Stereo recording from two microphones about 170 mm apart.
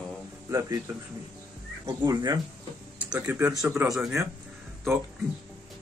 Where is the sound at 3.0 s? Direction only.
10° right (ahead or behind).